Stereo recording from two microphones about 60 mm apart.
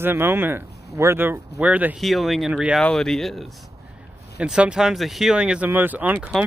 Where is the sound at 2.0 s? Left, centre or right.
Centre.